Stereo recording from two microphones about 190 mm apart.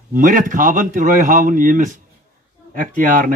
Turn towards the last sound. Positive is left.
turn(degrees=-45)  # may be behind; listen again after turning